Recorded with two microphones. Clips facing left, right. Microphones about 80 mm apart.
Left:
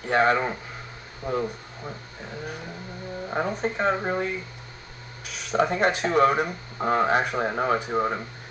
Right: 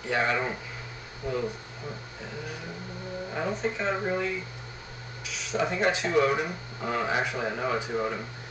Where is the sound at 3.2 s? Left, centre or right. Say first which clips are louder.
Left 3 dB; left.